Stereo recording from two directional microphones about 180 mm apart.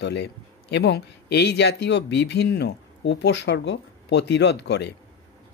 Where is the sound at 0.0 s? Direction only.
70° left (ahead or behind).